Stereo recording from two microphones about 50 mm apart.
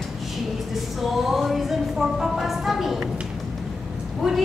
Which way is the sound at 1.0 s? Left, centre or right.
Centre.